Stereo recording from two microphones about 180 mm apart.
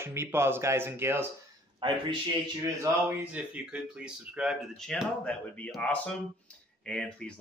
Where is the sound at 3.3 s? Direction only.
5° right (ahead or behind).